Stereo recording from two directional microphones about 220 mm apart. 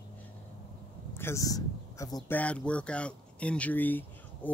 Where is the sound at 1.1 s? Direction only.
10° left (ahead or behind).